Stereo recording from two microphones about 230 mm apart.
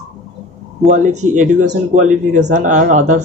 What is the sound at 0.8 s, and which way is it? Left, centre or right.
Speech, right.